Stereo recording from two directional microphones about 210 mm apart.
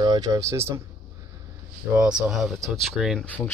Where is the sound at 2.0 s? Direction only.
5° right (ahead or behind).